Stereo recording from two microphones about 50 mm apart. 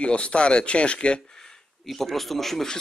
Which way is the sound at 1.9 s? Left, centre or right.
Centre.